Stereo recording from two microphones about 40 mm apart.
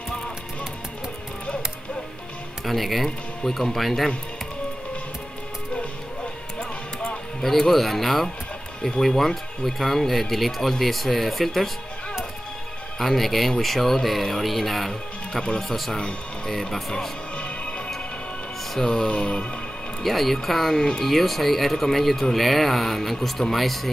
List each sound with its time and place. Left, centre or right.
2.6 s speech: centre
5.8 s music: left
7.4 s speech: centre
13.0 s speech: centre
17.4 s music: left
18.8 s speech: centre
20.0 s speech: centre